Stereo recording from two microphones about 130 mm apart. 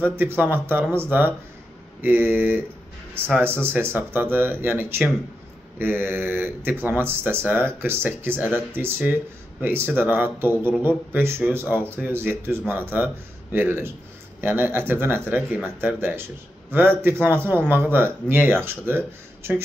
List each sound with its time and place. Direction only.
0.0 s speech: 15° right (ahead or behind)
2.0 s speech: 15° right (ahead or behind)